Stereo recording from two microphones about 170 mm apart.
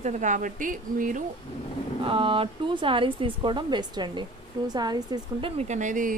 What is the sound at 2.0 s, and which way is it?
Speech, 30° right (ahead or behind).